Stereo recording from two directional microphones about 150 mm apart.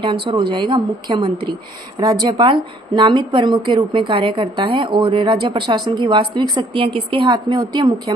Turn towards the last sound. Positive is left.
turn(degrees=-25)  # may be behind; listen again after turning